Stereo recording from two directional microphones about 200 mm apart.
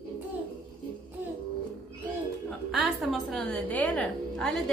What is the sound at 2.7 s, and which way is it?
A woman's voice, centre (ahead or behind).